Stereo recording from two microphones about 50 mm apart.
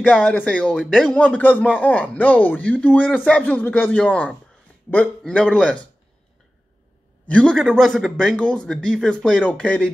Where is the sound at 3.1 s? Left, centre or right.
Left.